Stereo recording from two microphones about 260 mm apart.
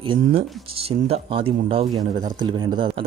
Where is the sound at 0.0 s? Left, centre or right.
Centre.